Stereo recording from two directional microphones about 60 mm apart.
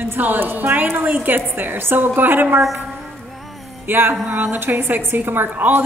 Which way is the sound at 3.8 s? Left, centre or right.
Right.